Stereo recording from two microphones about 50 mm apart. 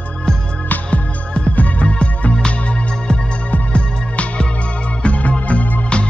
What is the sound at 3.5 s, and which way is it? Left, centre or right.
Music, left.